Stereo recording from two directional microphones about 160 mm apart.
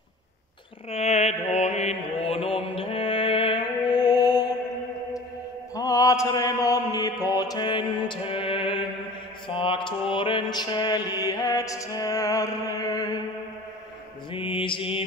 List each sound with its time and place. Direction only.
0.8 s mantra: 40° left (ahead or behind)
5.8 s mantra: 20° left (ahead or behind)
14.3 s mantra: 30° left (ahead or behind)